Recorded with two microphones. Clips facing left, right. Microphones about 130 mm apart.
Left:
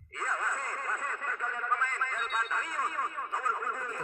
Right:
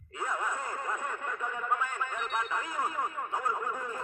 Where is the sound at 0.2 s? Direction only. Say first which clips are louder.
Right 1 dB; 10° right (ahead or behind).